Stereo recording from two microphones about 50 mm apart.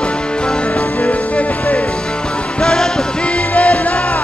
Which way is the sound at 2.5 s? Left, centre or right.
Centre.